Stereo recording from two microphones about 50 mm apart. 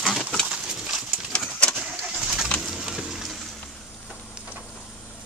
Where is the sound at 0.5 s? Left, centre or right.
Centre.